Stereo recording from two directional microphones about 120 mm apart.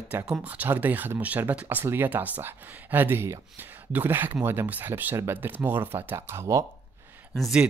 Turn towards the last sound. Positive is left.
turn(degrees=-5)  # may be behind; listen again after turning